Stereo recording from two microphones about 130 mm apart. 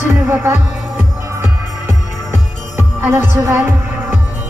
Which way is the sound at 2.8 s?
20° right (ahead or behind).